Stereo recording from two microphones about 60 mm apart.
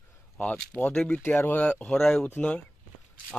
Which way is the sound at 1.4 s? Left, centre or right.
Left.